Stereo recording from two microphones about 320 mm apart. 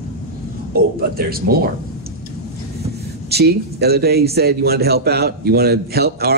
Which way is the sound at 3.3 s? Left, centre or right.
Right.